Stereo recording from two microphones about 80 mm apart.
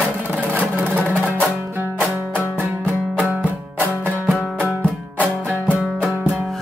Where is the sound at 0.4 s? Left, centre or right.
Right.